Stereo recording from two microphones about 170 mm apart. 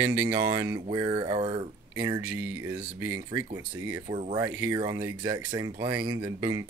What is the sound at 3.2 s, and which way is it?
Speech, 20° right (ahead or behind).